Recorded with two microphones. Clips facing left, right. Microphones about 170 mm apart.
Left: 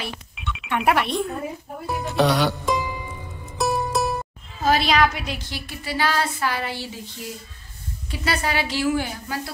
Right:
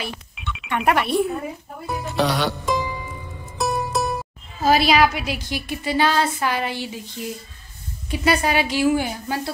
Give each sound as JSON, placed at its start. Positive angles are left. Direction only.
{"t": 0.0, "sound": "speech", "side_deg": 0}
{"t": 8.1, "sound": "a woman's voice", "side_deg": -15}